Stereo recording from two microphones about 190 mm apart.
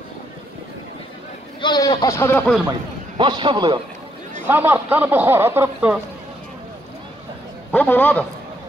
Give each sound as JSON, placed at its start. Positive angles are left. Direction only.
{"t": 1.6, "sound": "speech", "side_deg": 20}
{"t": 3.2, "sound": "a man's voice", "side_deg": -20}
{"t": 4.5, "sound": "speech", "side_deg": -10}
{"t": 7.7, "sound": "speech", "side_deg": 10}